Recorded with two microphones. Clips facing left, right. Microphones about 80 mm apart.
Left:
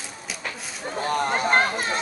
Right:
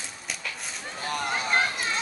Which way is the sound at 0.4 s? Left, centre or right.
Left.